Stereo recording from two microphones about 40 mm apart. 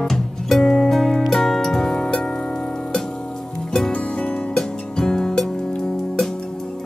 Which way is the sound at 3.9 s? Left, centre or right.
Left.